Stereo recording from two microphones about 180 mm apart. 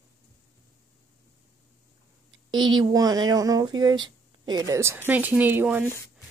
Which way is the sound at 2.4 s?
25° right (ahead or behind).